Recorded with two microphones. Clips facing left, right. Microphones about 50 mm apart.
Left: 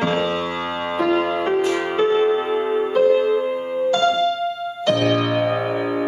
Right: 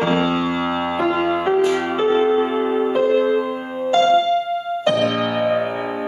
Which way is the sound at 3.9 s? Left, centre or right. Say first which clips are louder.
Right 6 dB; right.